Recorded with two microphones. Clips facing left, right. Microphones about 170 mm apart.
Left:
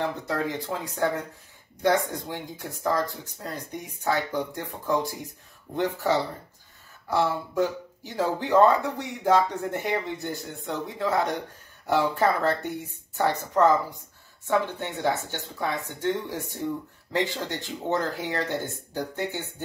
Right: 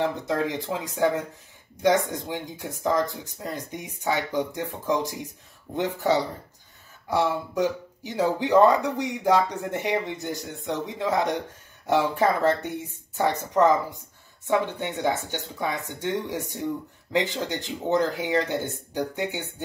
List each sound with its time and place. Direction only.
0.0 s speech: 20° right (ahead or behind)